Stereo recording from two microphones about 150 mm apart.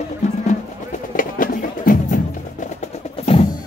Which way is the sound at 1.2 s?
65° left (ahead or behind).